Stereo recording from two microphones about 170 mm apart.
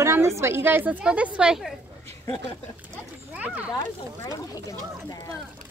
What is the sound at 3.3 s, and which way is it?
Speech, 10° right (ahead or behind).